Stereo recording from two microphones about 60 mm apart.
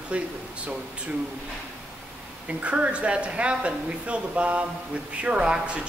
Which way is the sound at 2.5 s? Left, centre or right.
Centre.